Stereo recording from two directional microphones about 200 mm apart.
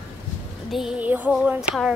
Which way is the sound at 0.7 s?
5° right (ahead or behind).